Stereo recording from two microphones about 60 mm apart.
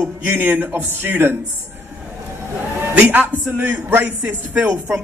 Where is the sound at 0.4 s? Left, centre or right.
Right.